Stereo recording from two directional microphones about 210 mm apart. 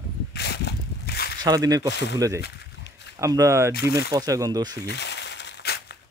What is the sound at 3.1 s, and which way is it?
Speech, 15° right (ahead or behind).